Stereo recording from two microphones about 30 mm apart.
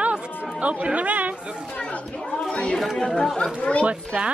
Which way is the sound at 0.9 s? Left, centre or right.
Right.